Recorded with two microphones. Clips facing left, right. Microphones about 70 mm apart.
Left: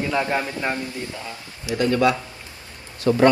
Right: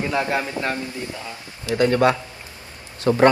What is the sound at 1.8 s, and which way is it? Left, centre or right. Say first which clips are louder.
Speech: right 2 dB; right.